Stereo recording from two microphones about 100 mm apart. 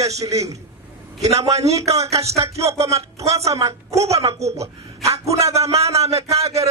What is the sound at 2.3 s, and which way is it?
A man's voice, 90° right.